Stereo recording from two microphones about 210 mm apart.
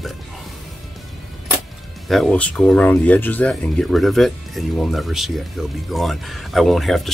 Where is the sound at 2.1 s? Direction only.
Centre (ahead or behind).